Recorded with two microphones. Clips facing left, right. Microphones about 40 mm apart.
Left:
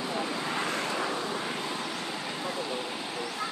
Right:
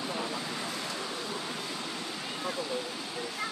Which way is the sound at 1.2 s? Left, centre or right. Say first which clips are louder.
Left 4 dB; left.